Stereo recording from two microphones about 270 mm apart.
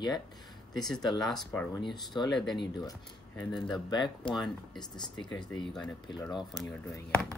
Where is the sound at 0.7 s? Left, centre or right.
Centre.